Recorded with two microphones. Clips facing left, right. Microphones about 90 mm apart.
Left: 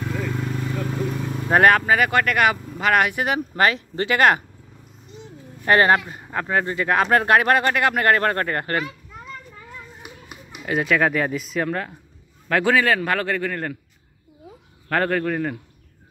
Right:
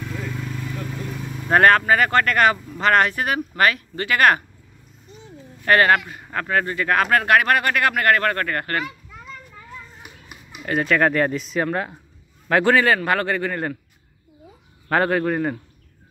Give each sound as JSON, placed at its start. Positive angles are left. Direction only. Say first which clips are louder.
{"t": 0.5, "sound": "vehicle", "louder": "left 4 dB", "side_deg": 40}
{"t": 1.5, "sound": "speech", "louder": "right 1 dB", "side_deg": 10}
{"t": 5.7, "sound": "speech", "louder": "even", "side_deg": 25}
{"t": 6.2, "sound": "speech", "louder": "even", "side_deg": 15}
{"t": 10.6, "sound": "speech", "louder": "right 1 dB", "side_deg": 5}
{"t": 14.9, "sound": "a man's voice", "louder": "right 2 dB", "side_deg": -10}